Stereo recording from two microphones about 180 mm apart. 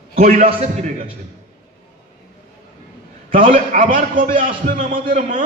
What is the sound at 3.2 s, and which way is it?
A man's voice, 50° right (ahead or behind).